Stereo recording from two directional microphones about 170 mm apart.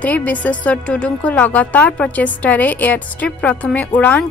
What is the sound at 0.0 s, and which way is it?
A woman's voice, 10° left (ahead or behind).